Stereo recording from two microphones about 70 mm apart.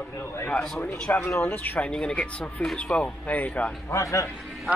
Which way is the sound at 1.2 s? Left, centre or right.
Left.